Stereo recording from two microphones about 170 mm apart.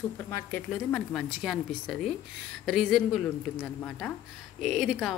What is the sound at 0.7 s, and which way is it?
A woman's voice, 5° left (ahead or behind).